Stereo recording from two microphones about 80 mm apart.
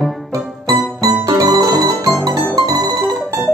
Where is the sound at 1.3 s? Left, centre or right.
Right.